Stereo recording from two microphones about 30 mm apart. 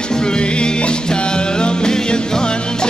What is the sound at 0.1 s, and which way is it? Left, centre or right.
Music, left.